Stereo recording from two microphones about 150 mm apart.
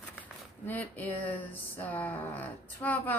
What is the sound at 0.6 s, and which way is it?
Speech, 10° left (ahead or behind).